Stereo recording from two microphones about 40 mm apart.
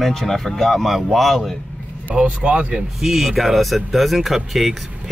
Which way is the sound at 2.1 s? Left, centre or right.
Right.